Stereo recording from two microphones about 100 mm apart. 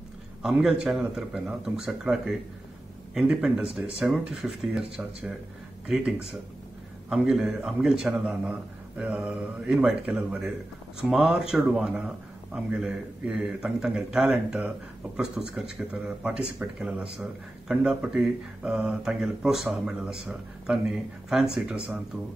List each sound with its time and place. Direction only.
0.4 s a man's voice: 5° right (ahead or behind)
7.2 s speech: 5° right (ahead or behind)